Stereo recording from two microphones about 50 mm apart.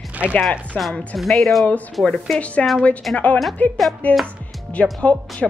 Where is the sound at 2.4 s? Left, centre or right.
Left.